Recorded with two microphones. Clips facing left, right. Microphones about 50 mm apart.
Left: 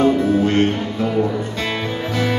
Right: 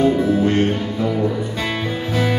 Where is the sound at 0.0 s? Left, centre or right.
Left.